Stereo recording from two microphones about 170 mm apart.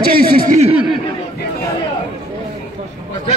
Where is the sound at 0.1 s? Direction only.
60° right (ahead or behind).